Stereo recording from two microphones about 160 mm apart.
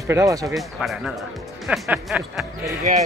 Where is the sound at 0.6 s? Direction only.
Centre (ahead or behind).